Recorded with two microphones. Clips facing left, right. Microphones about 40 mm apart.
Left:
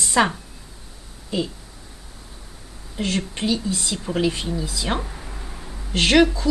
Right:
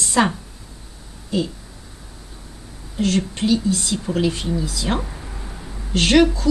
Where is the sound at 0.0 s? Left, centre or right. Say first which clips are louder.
Right 1 dB; centre.